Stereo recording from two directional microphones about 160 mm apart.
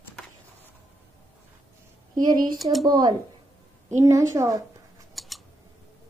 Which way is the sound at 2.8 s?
25° right (ahead or behind).